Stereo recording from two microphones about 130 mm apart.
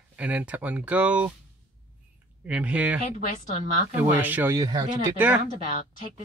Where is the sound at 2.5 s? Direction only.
10° right (ahead or behind).